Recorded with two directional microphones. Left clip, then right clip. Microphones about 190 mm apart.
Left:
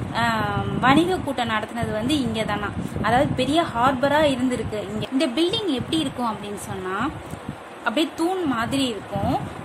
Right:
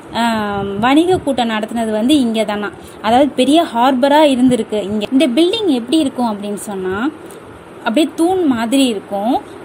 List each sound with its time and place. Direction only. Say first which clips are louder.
0.1 s a woman's voice: right 6 dB; 25° right (ahead or behind)
7.8 s a woman's voice: right 8 dB; 25° right (ahead or behind)